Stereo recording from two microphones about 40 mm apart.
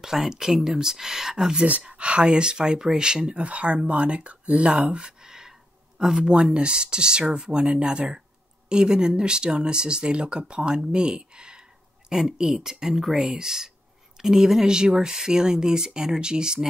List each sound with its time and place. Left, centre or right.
0.0 s speech: centre
1.7 s speech: right
3.3 s speech: right
12.1 s speech: centre